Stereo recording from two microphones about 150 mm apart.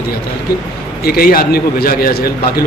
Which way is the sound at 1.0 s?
85° left.